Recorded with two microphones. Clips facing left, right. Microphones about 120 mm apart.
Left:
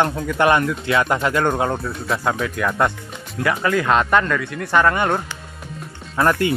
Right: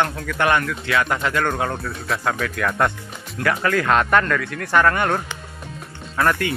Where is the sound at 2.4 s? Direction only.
15° left (ahead or behind).